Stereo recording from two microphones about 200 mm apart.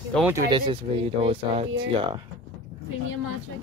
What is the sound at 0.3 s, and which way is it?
Speech, 20° right (ahead or behind).